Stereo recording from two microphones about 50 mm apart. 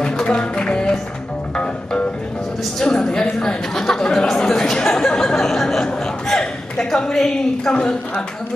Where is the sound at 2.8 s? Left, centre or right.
Centre.